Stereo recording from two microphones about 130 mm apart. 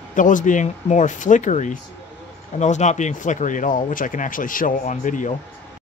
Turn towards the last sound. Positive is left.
turn(degrees=80)